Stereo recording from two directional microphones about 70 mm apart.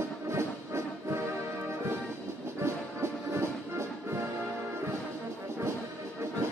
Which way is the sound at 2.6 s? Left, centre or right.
Right.